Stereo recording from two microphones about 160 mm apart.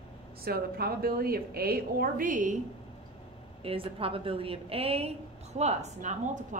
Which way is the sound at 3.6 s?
35° right (ahead or behind).